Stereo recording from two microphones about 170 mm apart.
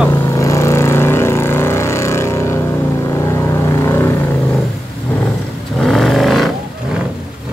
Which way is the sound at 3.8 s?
15° left (ahead or behind).